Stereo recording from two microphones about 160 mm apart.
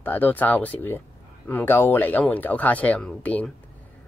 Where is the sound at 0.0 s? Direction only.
10° left (ahead or behind).